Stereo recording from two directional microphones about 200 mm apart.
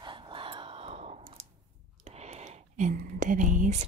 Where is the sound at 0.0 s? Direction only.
25° right (ahead or behind).